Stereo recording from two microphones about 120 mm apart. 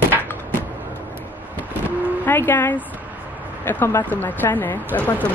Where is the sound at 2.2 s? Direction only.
15° left (ahead or behind).